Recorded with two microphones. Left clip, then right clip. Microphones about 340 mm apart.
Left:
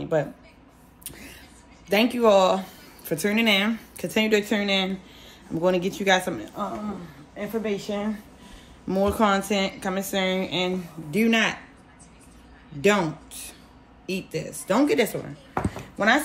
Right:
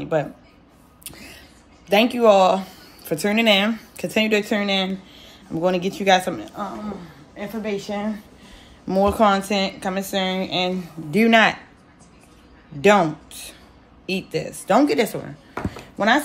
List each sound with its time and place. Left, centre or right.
0.0 s speech: centre
1.0 s vehicle: centre
1.9 s speech: centre
11.1 s a woman's voice: centre
12.8 s a woman's voice: centre